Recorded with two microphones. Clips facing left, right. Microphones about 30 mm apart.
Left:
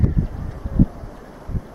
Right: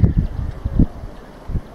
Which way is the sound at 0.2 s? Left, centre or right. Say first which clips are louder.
Right 1 dB; right.